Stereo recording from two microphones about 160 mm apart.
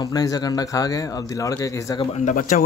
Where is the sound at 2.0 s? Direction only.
45° left (ahead or behind).